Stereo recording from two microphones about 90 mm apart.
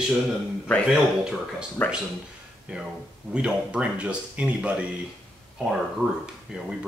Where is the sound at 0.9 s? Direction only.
5° right (ahead or behind).